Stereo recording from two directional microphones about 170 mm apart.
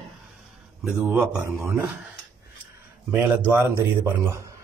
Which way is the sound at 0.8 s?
5° right (ahead or behind).